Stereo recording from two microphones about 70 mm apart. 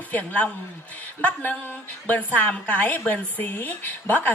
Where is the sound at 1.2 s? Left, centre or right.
Left.